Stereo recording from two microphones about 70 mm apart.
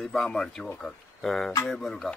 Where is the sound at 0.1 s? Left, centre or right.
Centre.